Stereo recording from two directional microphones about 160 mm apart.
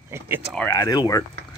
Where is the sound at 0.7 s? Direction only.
25° left (ahead or behind).